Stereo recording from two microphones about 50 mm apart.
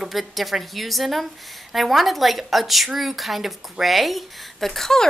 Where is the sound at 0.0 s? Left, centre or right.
Centre.